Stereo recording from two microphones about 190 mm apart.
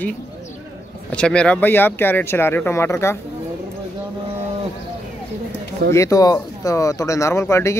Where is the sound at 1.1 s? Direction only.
5° left (ahead or behind).